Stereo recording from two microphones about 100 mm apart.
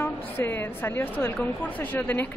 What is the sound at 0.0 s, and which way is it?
A woman's voice, 20° left (ahead or behind).